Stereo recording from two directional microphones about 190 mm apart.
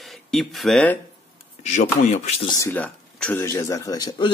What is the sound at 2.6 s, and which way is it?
Speech, 10° left (ahead or behind).